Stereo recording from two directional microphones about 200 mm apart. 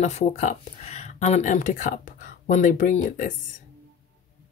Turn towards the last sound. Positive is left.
turn(degrees=40)  # may be behind; listen again after turning